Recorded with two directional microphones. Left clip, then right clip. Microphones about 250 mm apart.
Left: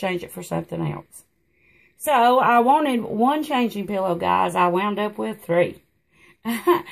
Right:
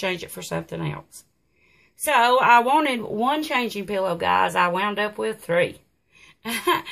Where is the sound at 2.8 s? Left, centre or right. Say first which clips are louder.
Left 2 dB; right.